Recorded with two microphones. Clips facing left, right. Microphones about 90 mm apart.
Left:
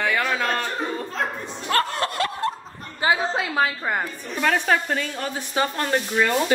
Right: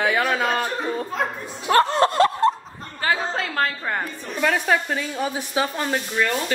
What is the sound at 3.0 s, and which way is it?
Speech, 10° left (ahead or behind).